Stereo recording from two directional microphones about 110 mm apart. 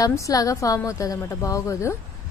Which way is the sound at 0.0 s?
30° left (ahead or behind).